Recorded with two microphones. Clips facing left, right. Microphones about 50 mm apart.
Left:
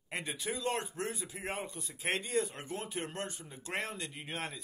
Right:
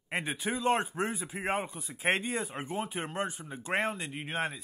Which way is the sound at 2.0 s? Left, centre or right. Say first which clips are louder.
Right 3 dB; right.